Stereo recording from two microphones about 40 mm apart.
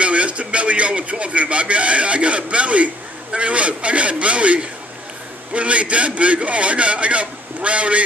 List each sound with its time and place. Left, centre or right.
0.0 s a man's voice: right